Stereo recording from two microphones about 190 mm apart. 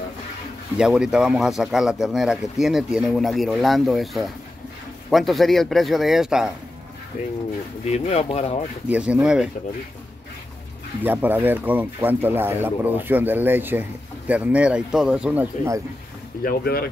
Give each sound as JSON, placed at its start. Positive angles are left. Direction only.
{"t": 0.7, "sound": "speech", "side_deg": -5}
{"t": 7.8, "sound": "speech", "side_deg": 35}
{"t": 8.8, "sound": "speech", "side_deg": -5}
{"t": 11.0, "sound": "speech", "side_deg": -10}
{"t": 16.4, "sound": "speech", "side_deg": 55}